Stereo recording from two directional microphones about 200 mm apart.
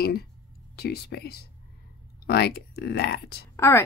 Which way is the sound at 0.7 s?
50° left (ahead or behind).